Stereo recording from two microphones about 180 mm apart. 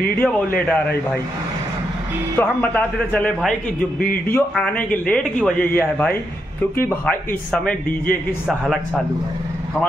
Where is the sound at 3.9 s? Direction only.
55° left (ahead or behind).